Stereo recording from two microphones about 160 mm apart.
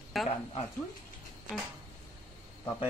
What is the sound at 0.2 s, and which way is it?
Speech, centre (ahead or behind).